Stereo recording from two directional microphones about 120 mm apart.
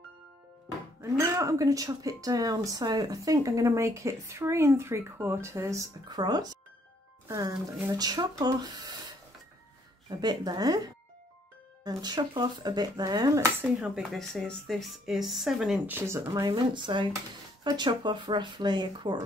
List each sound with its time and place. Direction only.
1.0 s speech: 25° right (ahead or behind)
10.0 s speech: 35° right (ahead or behind)
11.8 s speech: 35° right (ahead or behind)
13.7 s speech: 10° right (ahead or behind)
15.9 s speech: 20° right (ahead or behind)
16.4 s speech: 40° right (ahead or behind)